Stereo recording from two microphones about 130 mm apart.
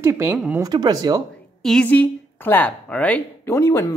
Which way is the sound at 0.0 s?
20° right (ahead or behind).